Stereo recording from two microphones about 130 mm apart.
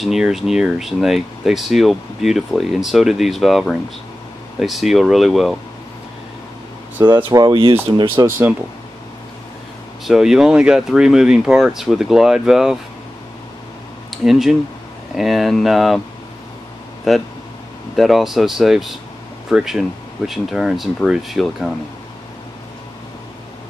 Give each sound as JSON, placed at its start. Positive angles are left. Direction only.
{"t": 0.0, "sound": "speech", "side_deg": -5}
{"t": 7.2, "sound": "speech", "side_deg": -35}
{"t": 8.3, "sound": "speech", "side_deg": -15}
{"t": 10.0, "sound": "speech", "side_deg": -5}
{"t": 14.1, "sound": "speech", "side_deg": 0}
{"t": 17.1, "sound": "speech", "side_deg": 0}